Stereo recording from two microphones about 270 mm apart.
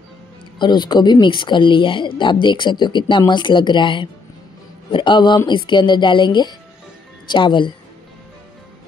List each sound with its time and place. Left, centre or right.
0.6 s speech: centre